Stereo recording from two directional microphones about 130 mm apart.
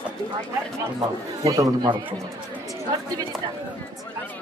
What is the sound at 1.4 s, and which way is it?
Speech, 25° right (ahead or behind).